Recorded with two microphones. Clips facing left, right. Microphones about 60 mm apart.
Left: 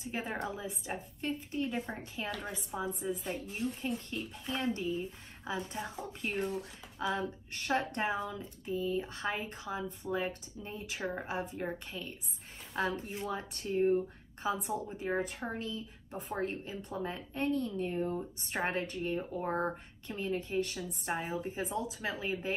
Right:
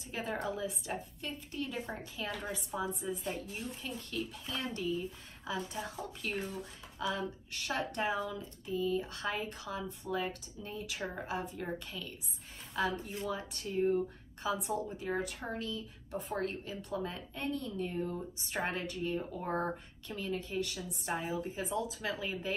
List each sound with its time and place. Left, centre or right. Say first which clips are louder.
0.0 s speech: even; left
12.7 s speech: even; left
13.7 s speech: left 2 dB; left
14.4 s speech: even; left